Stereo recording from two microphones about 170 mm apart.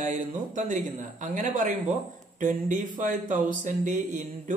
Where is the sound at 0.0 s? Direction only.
50° right (ahead or behind).